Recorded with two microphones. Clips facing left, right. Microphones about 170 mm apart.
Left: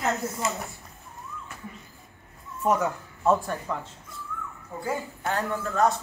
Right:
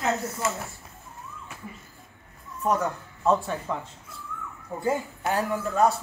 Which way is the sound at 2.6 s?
10° left (ahead or behind).